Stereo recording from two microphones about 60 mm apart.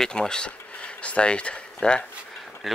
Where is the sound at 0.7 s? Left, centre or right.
Centre.